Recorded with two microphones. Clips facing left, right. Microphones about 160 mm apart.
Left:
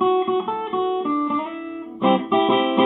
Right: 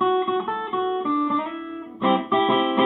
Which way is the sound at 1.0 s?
Centre (ahead or behind).